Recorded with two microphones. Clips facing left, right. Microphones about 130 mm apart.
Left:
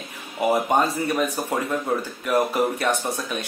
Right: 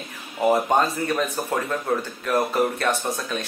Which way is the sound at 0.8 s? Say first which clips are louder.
Left 1 dB; 15° left (ahead or behind).